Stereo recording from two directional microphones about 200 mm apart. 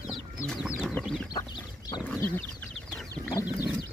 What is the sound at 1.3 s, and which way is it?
Chicken, 20° left (ahead or behind).